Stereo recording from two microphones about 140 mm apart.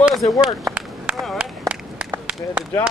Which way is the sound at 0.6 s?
10° right (ahead or behind).